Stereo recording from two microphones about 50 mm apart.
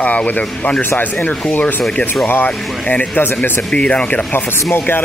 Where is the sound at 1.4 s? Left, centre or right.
Left.